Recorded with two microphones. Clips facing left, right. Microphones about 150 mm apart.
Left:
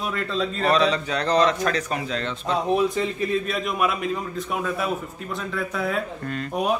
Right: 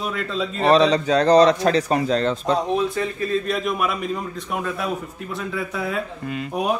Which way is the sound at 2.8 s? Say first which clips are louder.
Even; 20° left (ahead or behind).